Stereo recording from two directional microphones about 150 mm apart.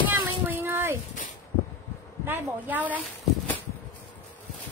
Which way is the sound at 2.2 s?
15° right (ahead or behind).